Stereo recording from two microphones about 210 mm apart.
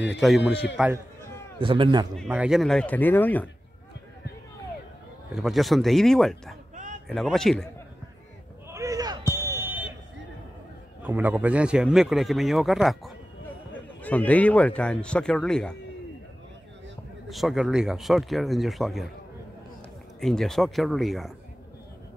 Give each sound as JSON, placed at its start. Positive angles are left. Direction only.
{"t": 0.0, "sound": "a man's voice", "side_deg": 0}
{"t": 1.6, "sound": "a man's voice", "side_deg": -25}
{"t": 2.1, "sound": "a man's voice", "side_deg": 0}
{"t": 5.3, "sound": "a man's voice", "side_deg": 0}
{"t": 6.7, "sound": "a sound", "side_deg": -35}
{"t": 7.1, "sound": "a man's voice", "side_deg": 0}
{"t": 8.6, "sound": "basketball bounce", "side_deg": -15}
{"t": 11.0, "sound": "a man's voice", "side_deg": -10}
{"t": 17.3, "sound": "a man's voice", "side_deg": 0}
{"t": 20.2, "sound": "a man's voice", "side_deg": 0}